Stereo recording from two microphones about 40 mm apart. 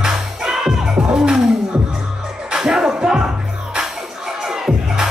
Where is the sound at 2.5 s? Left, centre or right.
Centre.